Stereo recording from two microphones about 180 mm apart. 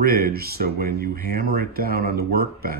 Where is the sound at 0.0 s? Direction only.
60° right (ahead or behind).